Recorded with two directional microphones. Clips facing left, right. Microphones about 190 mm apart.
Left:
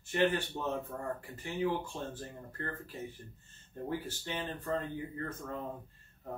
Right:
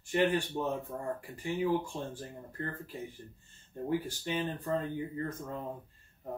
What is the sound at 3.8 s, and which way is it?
Speech, 10° right (ahead or behind).